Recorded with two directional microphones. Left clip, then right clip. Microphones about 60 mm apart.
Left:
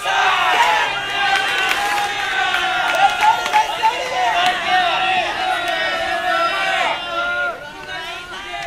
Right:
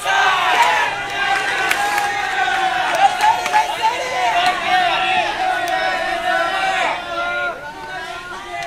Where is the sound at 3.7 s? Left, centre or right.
Centre.